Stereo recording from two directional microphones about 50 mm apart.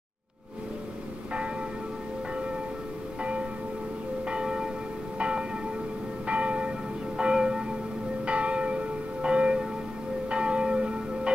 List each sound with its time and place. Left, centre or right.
3.2 s church bell: right
6.2 s church bell: right